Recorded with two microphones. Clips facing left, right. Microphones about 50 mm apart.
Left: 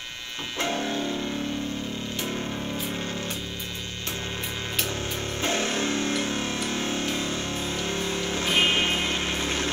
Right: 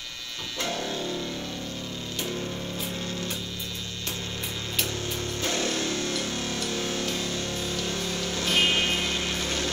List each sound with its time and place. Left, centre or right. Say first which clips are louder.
0.6 s music: left 3 dB; left
5.4 s music: left 3 dB; left